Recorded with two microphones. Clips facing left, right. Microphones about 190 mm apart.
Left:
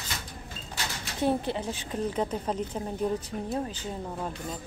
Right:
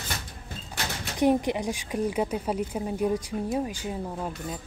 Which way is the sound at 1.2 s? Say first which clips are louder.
Right 4 dB; 15° right (ahead or behind).